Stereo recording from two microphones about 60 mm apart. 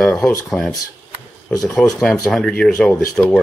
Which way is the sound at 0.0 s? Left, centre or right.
Left.